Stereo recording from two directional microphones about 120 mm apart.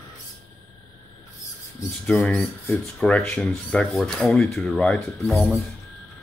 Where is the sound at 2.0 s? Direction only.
5° left (ahead or behind).